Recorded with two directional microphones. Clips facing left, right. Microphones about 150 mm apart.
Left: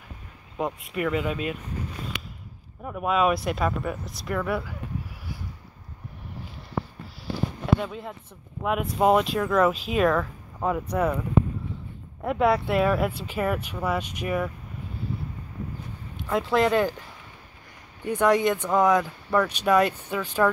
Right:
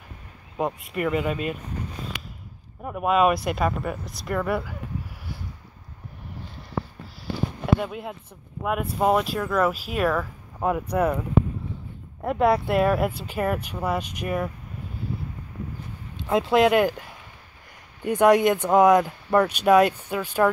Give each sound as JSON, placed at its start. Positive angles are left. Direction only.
{"t": 0.6, "sound": "speech", "side_deg": 0}
{"t": 2.8, "sound": "speech", "side_deg": -5}
{"t": 7.6, "sound": "speech", "side_deg": -5}
{"t": 12.2, "sound": "speech", "side_deg": 0}
{"t": 16.2, "sound": "speech", "side_deg": -20}
{"t": 18.0, "sound": "speech", "side_deg": -10}